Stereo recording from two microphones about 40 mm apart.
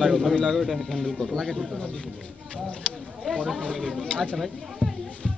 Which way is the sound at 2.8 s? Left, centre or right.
Left.